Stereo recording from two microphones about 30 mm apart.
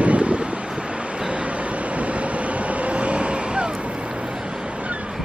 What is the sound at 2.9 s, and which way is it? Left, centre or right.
Vehicle, right.